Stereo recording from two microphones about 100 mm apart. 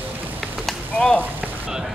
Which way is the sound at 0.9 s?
10° left (ahead or behind).